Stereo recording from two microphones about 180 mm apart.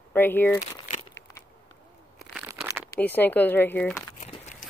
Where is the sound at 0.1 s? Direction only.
10° left (ahead or behind).